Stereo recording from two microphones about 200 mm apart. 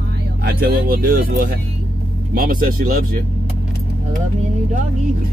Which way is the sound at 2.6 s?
45° right (ahead or behind).